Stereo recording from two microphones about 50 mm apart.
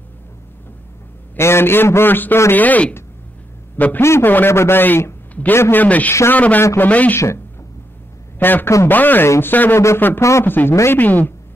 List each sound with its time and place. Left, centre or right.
1.4 s a man's voice: left
4.5 s a man's voice: left
5.9 s speech: left
8.4 s a man's voice: left
10.7 s speech: left
11.0 s speech: left